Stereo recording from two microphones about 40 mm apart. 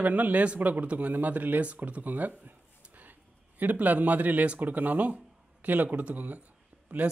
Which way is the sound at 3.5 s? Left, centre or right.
Right.